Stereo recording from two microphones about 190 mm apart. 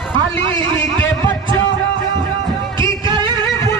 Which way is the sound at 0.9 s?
10° left (ahead or behind).